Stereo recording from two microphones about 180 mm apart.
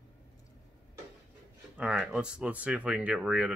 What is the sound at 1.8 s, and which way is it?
Speech, 5° right (ahead or behind).